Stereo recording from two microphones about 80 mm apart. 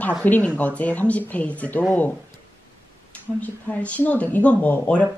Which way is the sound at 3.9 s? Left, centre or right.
Centre.